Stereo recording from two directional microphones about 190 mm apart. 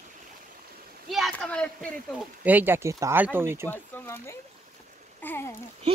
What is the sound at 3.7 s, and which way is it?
Speech, 10° left (ahead or behind).